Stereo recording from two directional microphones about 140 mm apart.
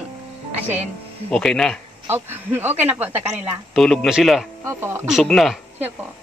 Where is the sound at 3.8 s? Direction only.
Centre (ahead or behind).